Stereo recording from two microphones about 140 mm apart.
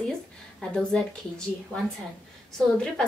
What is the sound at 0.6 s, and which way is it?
Speech, 5° left (ahead or behind).